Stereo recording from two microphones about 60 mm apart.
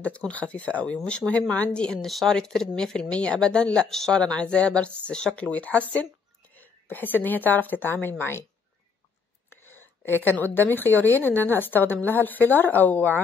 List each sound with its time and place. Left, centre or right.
0.0 s speech: left; by 4.2 s centre
4.2 s speech: centre
6.5 s a sound: left
7.2 s speech: left
9.7 s a woman's voice: left